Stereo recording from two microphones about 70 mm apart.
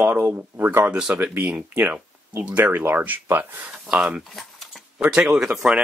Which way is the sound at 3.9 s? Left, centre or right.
Centre.